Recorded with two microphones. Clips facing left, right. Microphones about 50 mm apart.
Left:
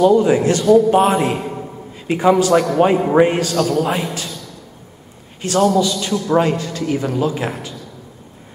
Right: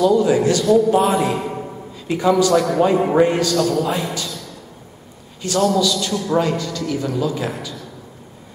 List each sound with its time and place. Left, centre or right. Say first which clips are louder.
0.0 s a man's voice: left 2 dB; left
5.4 s a man's voice: left 2 dB; left